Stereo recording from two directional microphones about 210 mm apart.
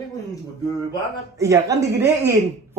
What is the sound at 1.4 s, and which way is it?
Speech, 15° right (ahead or behind).